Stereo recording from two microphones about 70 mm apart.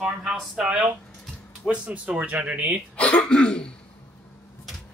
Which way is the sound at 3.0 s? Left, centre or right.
Centre.